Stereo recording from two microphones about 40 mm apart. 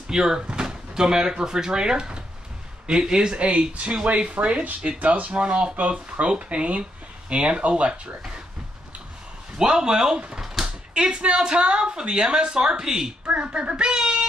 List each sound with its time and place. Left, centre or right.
0.1 s speech: centre
9.6 s speech: centre
13.4 s speech: right